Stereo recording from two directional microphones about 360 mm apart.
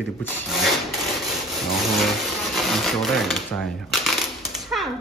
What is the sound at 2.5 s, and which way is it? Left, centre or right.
Typewriter, centre.